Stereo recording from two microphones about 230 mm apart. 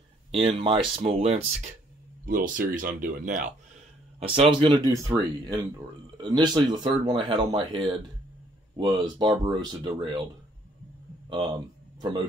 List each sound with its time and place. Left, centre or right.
0.3 s speech: right
4.2 s speech: right